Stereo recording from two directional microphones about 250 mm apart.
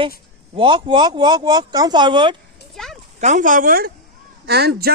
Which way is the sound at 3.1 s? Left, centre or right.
Right.